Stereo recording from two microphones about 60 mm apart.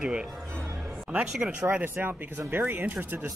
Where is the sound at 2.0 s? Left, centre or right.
Right.